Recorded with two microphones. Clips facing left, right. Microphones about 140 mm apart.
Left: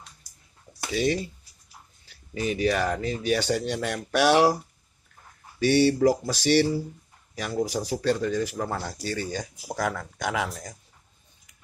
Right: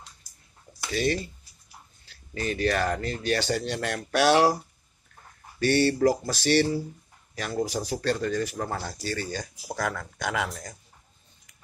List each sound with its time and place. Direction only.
0.9 s speech: 10° left (ahead or behind)
5.6 s speech: 10° left (ahead or behind)